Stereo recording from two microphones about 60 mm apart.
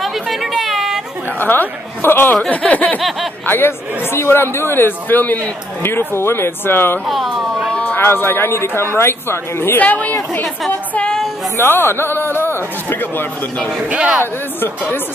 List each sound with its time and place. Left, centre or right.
0.0 s chatter: centre
1.4 s speech: left
2.5 s a sound: left
3.0 s speech: centre
3.4 s speech: left
5.8 s speech: left
7.1 s a sound: centre
7.9 s speech: left
9.8 s a sound: left
11.0 s a sound: centre
11.6 s speech: left
13.8 s speech: centre